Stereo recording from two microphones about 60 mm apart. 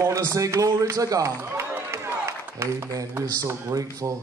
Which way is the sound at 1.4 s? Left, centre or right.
Right.